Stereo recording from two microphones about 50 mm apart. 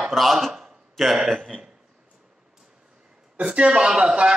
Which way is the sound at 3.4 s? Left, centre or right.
Centre.